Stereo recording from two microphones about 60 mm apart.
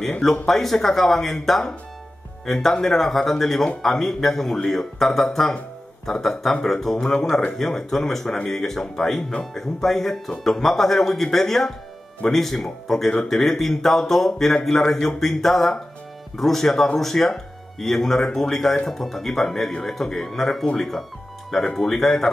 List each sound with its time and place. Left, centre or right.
0.2 s speech: centre